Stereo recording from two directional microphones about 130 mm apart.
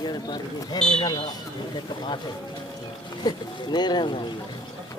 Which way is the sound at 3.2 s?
35° left (ahead or behind).